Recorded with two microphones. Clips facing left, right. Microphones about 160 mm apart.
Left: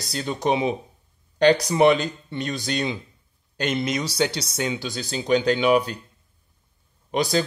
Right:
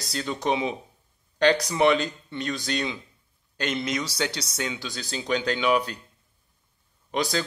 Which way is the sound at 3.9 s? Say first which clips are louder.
Left 4 dB; 15° left (ahead or behind).